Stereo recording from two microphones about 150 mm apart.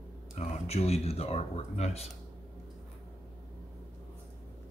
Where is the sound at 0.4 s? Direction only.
45° left (ahead or behind).